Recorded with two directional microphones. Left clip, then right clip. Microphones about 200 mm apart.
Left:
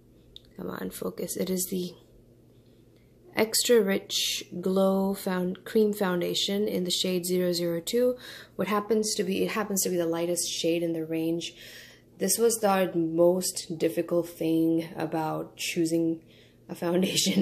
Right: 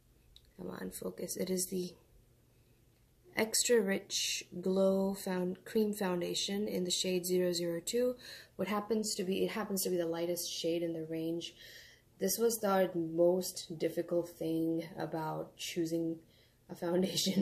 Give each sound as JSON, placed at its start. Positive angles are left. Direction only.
{"t": 0.6, "sound": "speech", "side_deg": 10}
{"t": 3.3, "sound": "speech", "side_deg": 15}